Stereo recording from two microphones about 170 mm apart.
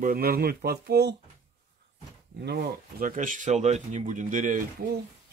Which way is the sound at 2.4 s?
65° right (ahead or behind).